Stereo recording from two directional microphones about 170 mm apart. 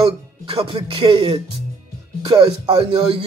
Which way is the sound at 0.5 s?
30° right (ahead or behind).